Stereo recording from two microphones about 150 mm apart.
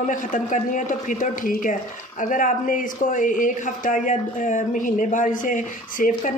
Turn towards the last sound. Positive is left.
turn(degrees=65)  # may be behind; listen again after turning